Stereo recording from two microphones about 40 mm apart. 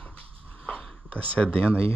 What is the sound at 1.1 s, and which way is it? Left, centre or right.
Speech, left.